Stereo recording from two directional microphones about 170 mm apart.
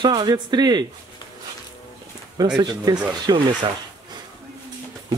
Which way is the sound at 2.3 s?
25° right (ahead or behind).